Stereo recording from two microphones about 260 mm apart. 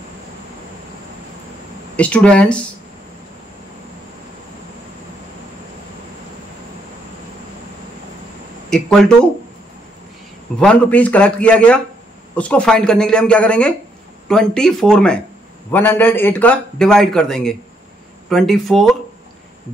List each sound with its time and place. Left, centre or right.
2.0 s a man's voice: centre
8.6 s a sound: centre
10.6 s a man's voice: centre